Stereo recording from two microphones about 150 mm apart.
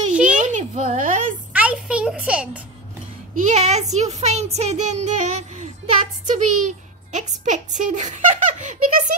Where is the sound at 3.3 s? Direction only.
50° right (ahead or behind).